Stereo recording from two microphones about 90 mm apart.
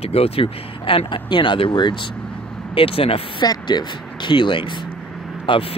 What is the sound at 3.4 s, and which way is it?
Speech, 55° left (ahead or behind).